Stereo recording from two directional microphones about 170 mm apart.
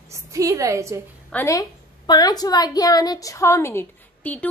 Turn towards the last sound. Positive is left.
turn(degrees=10)  # may be behind; listen again after turning